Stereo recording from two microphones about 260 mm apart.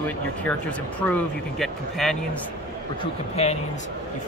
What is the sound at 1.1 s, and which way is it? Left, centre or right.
A man's voice, centre.